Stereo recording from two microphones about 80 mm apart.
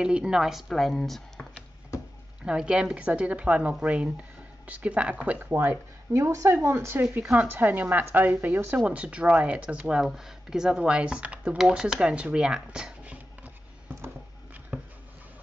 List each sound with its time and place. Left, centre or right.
0.0 s a woman's voice: centre
2.4 s speech: centre
5.5 s a woman's voice: right
10.0 s speech: centre
11.5 s a sound: centre